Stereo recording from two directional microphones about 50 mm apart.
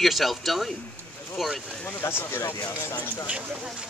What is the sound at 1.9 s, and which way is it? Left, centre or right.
Speech, left.